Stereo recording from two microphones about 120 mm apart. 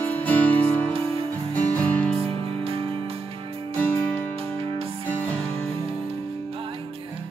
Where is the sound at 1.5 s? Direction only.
10° left (ahead or behind).